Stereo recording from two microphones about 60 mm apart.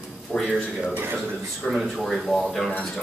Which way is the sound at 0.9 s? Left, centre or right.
Right.